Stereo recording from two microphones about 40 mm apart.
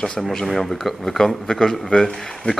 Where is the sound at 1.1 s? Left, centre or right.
Centre.